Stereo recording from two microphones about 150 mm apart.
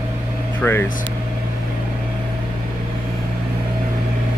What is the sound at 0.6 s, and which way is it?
Speech, 15° left (ahead or behind).